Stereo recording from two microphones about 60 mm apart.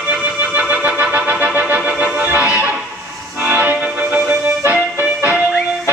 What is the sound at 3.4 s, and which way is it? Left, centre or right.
Music, right.